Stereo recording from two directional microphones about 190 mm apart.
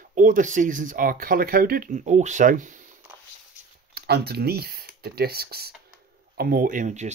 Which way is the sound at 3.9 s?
55° right (ahead or behind).